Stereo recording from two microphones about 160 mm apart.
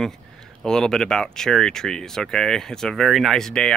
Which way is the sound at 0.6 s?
5° left (ahead or behind).